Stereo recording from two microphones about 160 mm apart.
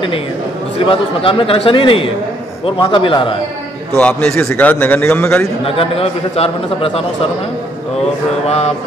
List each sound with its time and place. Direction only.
0.7 s a man's voice: 35° left (ahead or behind)
4.0 s a man's voice: 10° left (ahead or behind)
5.7 s a man's voice: 35° left (ahead or behind)
8.5 s a man's voice: 40° left (ahead or behind)